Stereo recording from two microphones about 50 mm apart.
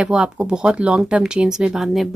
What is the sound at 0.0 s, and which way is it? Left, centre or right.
Speech, centre.